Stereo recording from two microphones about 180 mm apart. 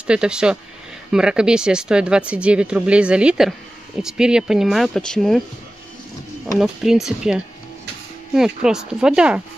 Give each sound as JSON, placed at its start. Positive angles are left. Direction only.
{"t": 0.0, "sound": "speech", "side_deg": -5}
{"t": 6.6, "sound": "speech", "side_deg": 0}